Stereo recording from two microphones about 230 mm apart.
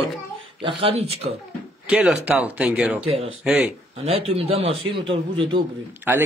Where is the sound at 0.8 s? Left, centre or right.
Right.